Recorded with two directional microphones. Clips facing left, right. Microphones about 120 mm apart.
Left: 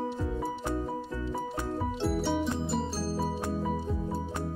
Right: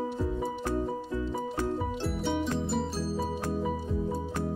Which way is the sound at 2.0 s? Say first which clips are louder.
Left 4 dB; centre (ahead or behind).